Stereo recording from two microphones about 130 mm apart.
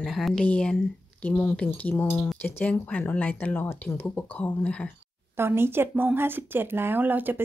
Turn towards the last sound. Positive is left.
turn(degrees=-15)  # may be behind; listen again after turning